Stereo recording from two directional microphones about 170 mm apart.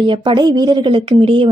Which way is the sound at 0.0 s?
30° right (ahead or behind).